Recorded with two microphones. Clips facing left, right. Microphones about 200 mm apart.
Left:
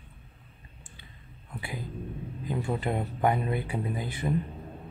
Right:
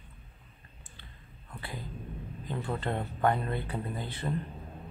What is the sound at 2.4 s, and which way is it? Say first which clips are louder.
Speech: left 4 dB; 10° left (ahead or behind).